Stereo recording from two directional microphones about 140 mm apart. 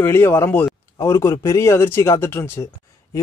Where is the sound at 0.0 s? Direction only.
15° left (ahead or behind).